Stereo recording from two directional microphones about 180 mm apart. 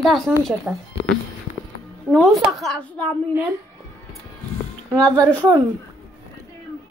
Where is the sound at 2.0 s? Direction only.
Centre (ahead or behind).